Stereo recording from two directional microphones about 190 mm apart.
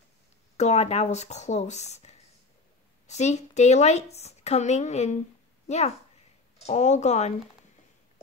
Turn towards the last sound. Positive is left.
turn(degrees=35)  # may be behind; listen again after turning